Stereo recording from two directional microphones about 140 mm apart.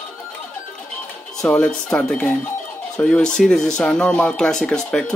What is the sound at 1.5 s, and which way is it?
Speech, 10° left (ahead or behind).